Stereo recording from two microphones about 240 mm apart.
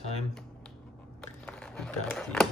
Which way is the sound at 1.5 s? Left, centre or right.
Centre.